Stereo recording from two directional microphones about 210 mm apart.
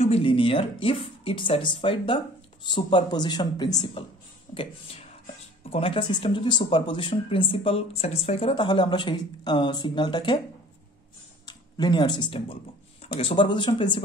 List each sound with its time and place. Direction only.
0.0 s speech: 25° left (ahead or behind)
11.4 s speech: 20° left (ahead or behind)